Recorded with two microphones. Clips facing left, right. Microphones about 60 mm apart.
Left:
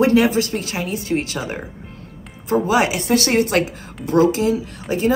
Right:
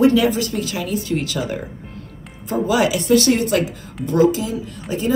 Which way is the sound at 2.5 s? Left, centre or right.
Left.